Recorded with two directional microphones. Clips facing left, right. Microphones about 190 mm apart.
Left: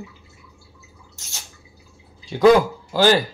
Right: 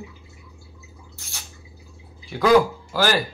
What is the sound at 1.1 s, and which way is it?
Drip, 20° left (ahead or behind).